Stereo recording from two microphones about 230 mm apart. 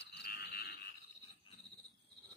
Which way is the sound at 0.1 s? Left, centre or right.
Left.